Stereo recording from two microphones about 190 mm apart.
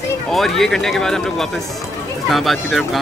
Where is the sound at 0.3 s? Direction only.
Centre (ahead or behind).